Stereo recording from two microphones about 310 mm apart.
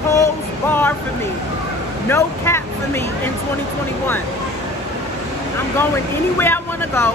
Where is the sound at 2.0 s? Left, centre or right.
Centre.